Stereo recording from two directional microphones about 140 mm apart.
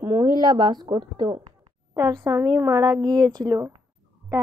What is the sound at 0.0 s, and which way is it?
Speech, 25° right (ahead or behind).